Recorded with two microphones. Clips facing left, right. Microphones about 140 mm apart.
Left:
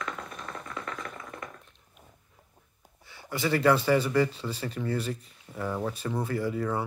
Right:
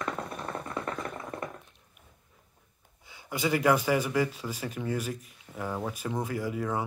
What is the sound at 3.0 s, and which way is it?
Speech, 15° right (ahead or behind).